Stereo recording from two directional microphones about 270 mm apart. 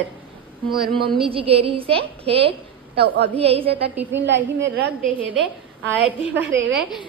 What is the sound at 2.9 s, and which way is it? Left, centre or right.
Speech, right.